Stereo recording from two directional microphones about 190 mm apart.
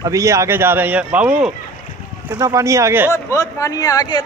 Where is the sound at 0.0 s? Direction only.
15° right (ahead or behind).